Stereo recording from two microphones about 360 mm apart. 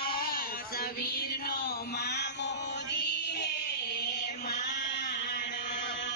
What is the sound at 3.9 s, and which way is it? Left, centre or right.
Music, left.